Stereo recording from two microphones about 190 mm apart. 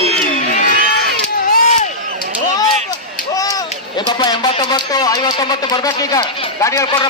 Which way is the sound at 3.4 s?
20° left (ahead or behind).